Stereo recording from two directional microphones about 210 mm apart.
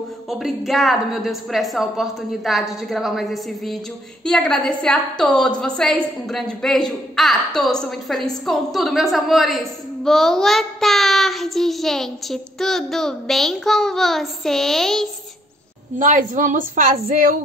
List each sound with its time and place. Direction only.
0.3 s a woman's voice: centre (ahead or behind)
16.0 s a woman's voice: 40° right (ahead or behind)